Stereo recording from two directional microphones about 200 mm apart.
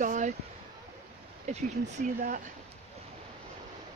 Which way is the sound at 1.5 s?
35° right (ahead or behind).